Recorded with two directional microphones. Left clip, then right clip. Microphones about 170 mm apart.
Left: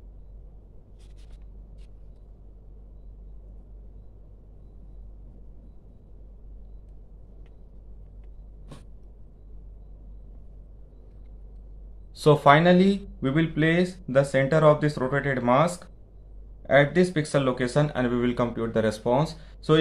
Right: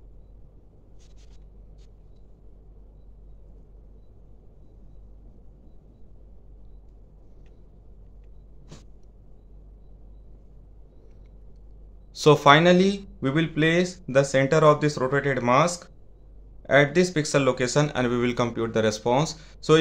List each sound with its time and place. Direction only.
12.2 s speech: 20° right (ahead or behind)